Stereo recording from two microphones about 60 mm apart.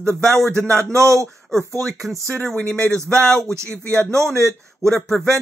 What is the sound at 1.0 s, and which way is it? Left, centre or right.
Speech, right.